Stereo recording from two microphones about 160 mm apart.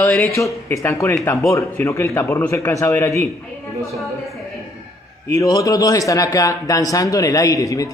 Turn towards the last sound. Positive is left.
turn(degrees=20)  # may be behind; listen again after turning